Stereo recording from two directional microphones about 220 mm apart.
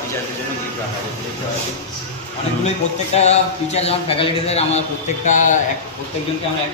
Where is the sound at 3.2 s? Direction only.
30° left (ahead or behind).